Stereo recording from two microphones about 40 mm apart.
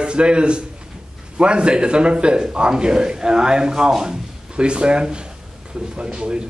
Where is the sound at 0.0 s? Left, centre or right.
Right.